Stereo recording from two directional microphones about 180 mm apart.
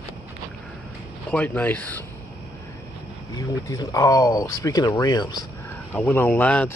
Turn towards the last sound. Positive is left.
turn(degrees=10)  # may be behind; listen again after turning